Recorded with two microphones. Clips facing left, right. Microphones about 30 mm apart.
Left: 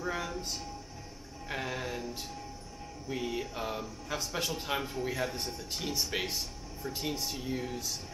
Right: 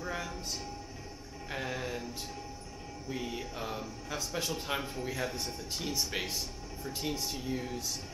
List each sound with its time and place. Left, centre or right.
0.0 s train: centre
1.5 s music: centre
3.1 s music: centre
4.1 s speech: centre